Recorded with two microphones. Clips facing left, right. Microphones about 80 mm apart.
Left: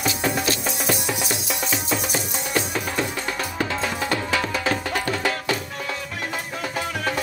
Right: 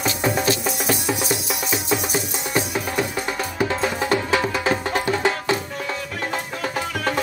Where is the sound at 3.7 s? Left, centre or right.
Right.